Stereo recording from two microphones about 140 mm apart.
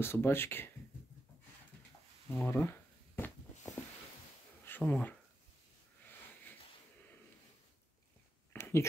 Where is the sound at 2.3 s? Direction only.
15° left (ahead or behind).